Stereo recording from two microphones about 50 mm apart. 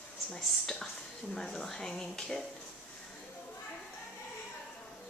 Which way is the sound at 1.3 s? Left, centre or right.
Centre.